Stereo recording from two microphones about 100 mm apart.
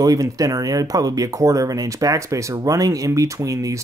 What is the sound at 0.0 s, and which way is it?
Speech, 35° right (ahead or behind).